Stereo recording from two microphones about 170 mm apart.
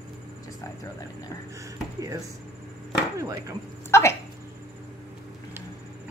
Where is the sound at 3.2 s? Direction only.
20° right (ahead or behind).